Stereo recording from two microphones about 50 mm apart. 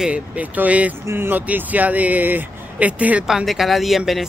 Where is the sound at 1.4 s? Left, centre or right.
Right.